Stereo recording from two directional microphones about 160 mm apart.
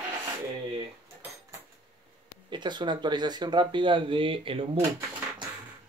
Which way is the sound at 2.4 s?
30° right (ahead or behind).